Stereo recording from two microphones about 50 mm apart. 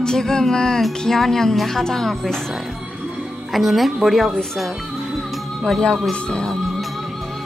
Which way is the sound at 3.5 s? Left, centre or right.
Centre.